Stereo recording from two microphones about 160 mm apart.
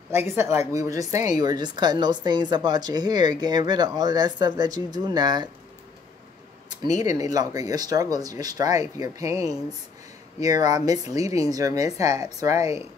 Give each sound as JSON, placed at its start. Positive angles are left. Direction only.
{"t": 0.1, "sound": "a woman's voice", "side_deg": -15}
{"t": 7.1, "sound": "a woman's voice", "side_deg": -20}